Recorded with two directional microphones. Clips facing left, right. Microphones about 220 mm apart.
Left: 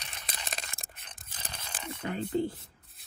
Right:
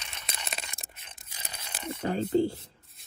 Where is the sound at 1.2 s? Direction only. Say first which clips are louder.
Left 1 dB; 45° left (ahead or behind).